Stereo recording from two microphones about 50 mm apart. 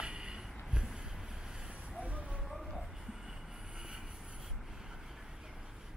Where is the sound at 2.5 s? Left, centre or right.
Centre.